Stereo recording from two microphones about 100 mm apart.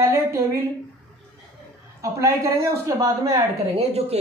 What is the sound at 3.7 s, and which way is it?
Speech, 90° right.